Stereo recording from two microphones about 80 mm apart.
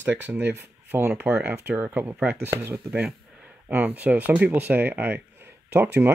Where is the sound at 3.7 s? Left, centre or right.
Right.